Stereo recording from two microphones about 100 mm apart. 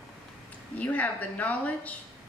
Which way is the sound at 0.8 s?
15° left (ahead or behind).